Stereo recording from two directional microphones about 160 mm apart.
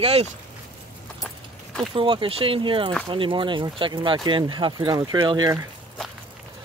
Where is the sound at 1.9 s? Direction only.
30° right (ahead or behind).